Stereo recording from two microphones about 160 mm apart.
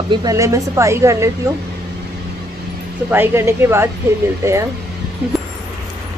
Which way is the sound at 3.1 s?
15° right (ahead or behind).